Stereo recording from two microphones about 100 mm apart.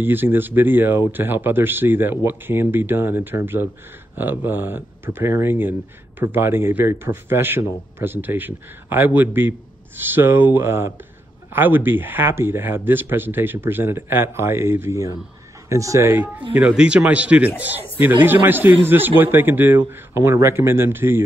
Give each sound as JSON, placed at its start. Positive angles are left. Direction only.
{"t": 0.0, "sound": "speech", "side_deg": -20}